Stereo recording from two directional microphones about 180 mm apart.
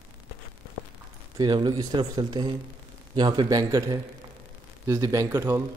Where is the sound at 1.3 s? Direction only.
25° right (ahead or behind).